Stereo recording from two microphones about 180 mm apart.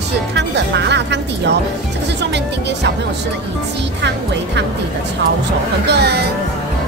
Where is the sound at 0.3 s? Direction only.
70° right (ahead or behind).